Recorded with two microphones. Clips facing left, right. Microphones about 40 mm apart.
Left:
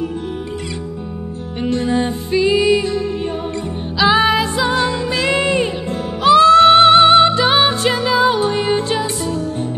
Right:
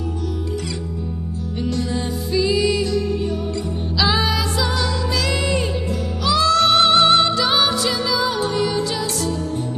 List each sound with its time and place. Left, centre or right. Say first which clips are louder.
1.6 s music: left 6 dB; left
4.0 s music: left 7 dB; left